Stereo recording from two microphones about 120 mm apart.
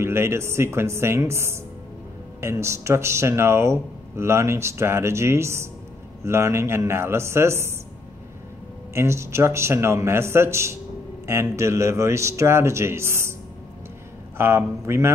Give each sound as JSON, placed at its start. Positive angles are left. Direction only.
{"t": 0.0, "sound": "speech", "side_deg": -20}
{"t": 8.9, "sound": "speech", "side_deg": -20}
{"t": 14.3, "sound": "speech", "side_deg": -20}